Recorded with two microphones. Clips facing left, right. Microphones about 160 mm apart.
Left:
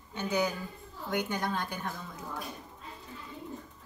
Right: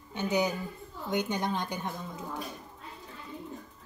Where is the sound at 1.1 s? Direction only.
20° right (ahead or behind).